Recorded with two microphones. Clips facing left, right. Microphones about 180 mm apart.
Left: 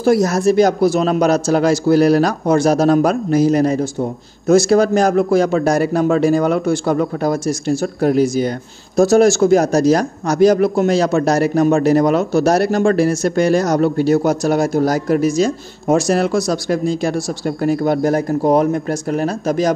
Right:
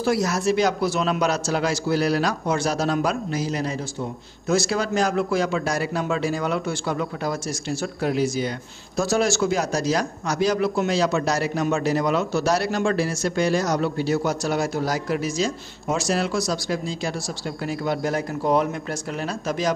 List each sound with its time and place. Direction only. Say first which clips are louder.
0.0 s a man's voice: left 8 dB; 45° left (ahead or behind)